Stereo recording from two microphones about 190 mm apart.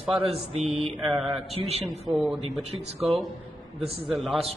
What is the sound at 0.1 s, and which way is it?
Mantra, 30° right (ahead or behind).